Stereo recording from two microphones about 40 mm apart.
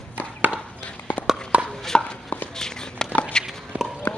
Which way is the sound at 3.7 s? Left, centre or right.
Right.